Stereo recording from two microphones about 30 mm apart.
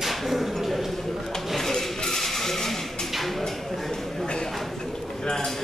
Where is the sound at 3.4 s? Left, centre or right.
Centre.